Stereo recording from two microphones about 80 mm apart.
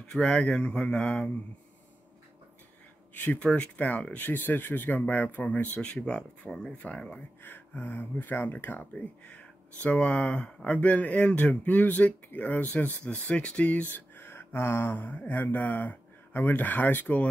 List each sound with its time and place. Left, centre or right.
0.1 s mantra: centre
3.2 s speech: centre